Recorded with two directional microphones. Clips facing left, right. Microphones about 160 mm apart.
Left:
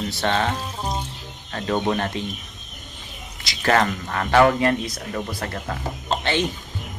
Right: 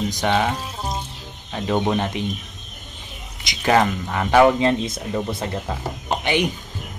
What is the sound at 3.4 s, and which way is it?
Speech, 15° right (ahead or behind).